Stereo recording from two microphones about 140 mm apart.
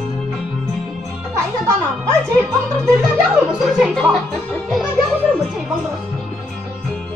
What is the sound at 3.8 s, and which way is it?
Music, 5° left (ahead or behind).